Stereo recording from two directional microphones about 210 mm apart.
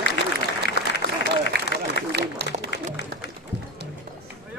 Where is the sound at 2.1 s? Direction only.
50° right (ahead or behind).